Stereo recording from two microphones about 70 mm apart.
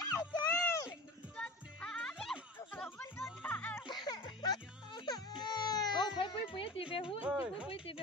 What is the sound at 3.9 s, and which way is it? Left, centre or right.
Music, left.